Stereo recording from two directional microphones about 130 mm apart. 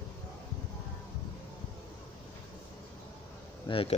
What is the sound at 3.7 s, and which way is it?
Speech, 45° left (ahead or behind).